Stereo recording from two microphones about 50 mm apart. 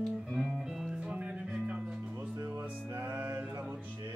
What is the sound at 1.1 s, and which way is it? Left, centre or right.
Music, right.